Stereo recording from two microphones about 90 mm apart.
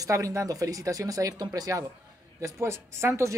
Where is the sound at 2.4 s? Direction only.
35° right (ahead or behind).